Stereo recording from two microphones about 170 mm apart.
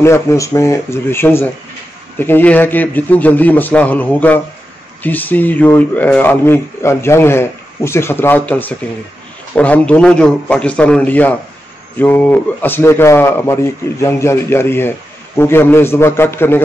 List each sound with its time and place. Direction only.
0.0 s a man's voice: 15° left (ahead or behind)